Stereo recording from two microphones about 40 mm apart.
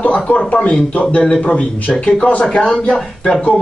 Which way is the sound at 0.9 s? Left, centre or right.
Left.